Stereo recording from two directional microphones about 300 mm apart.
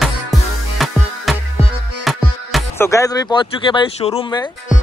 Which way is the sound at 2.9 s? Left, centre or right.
Centre.